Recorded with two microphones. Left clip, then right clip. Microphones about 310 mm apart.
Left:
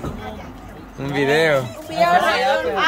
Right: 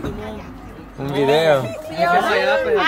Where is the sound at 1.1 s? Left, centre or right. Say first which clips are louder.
Right 2 dB; centre.